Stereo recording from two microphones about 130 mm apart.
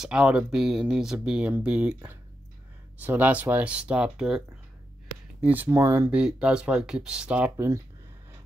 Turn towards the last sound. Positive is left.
turn(degrees=-10)  # may be behind; listen again after turning